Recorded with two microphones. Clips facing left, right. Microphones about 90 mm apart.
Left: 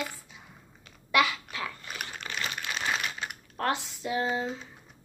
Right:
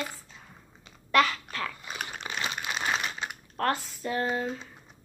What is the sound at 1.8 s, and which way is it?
Crumpling, 25° right (ahead or behind).